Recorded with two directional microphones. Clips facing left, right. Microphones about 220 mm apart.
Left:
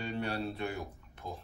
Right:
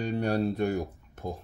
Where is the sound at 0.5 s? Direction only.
45° right (ahead or behind).